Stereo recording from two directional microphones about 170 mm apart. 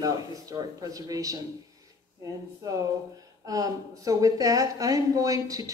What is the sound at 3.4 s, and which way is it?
Speech, 20° right (ahead or behind).